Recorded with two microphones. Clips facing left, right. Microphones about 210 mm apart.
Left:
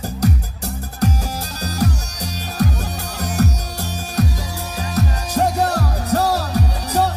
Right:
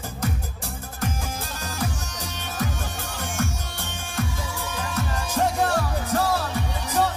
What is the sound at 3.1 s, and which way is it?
Music, 40° left (ahead or behind).